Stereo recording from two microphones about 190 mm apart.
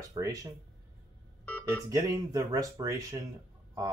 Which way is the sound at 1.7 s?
15° right (ahead or behind).